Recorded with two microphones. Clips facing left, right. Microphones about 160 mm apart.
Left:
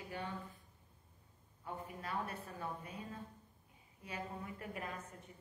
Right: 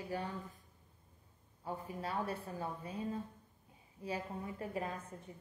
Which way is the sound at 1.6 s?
30° right (ahead or behind).